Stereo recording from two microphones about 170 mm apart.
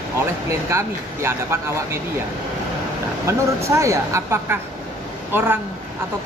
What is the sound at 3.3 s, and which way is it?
Speech, 15° right (ahead or behind).